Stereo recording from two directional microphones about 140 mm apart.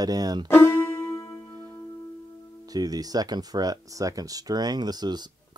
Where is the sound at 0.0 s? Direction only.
25° right (ahead or behind).